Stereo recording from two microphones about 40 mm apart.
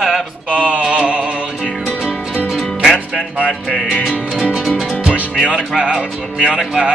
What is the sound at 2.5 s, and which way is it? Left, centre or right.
Music, centre.